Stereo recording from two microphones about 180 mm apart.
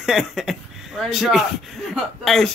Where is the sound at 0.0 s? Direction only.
Centre (ahead or behind).